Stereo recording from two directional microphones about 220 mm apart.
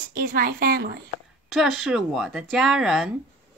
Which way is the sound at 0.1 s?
40° right (ahead or behind).